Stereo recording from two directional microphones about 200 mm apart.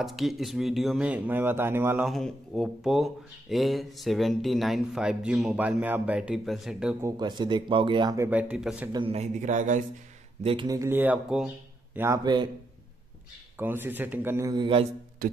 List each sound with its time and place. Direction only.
0.0 s speech: centre (ahead or behind)
2.0 s speech: centre (ahead or behind)
7.1 s speech: 20° right (ahead or behind)
8.3 s speech: 5° right (ahead or behind)
8.9 s a man's voice: 30° right (ahead or behind)
10.4 s speech: 25° right (ahead or behind)
13.6 s speech: 10° right (ahead or behind)